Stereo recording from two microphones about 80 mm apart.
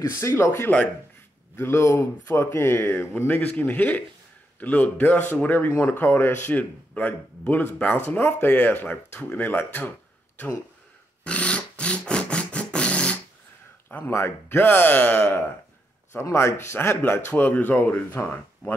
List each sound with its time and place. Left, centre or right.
0.0 s speech: left
3.3 s a man's voice: centre
11.2 s wood: centre
13.8 s a man's voice: left
18.6 s speech: centre